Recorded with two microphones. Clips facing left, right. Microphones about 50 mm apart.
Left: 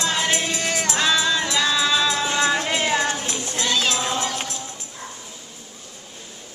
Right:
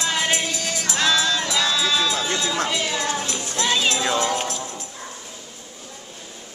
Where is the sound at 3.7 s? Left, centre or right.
Centre.